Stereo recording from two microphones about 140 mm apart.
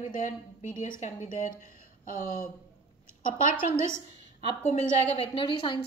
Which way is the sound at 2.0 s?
80° left.